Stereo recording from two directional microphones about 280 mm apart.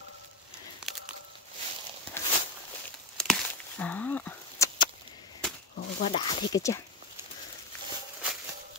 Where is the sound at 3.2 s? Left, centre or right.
Centre.